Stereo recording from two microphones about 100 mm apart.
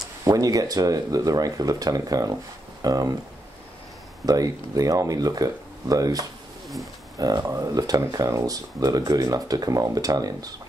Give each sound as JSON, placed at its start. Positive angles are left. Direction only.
{"t": 0.2, "sound": "speech", "side_deg": -35}
{"t": 4.3, "sound": "speech", "side_deg": -35}